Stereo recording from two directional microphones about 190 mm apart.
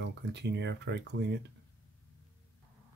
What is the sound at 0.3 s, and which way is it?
Speech, 65° right (ahead or behind).